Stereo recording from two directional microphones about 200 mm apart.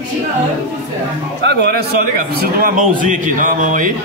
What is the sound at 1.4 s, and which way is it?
A man's voice, 55° right (ahead or behind).